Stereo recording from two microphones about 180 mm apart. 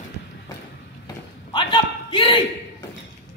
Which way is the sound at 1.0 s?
25° left (ahead or behind).